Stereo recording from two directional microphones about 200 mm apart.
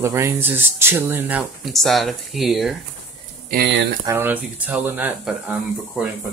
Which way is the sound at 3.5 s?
50° right (ahead or behind).